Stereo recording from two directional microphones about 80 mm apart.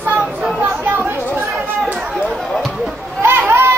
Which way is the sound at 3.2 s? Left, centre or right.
Right.